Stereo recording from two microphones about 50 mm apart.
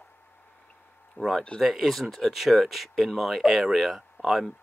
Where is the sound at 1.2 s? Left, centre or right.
Left.